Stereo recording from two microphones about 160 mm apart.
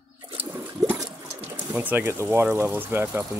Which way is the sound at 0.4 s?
10° right (ahead or behind).